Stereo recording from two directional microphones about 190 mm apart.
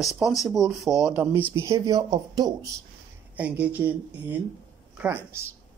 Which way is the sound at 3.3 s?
5° right (ahead or behind).